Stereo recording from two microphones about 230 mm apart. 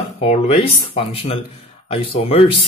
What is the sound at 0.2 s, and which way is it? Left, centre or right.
Speech, left.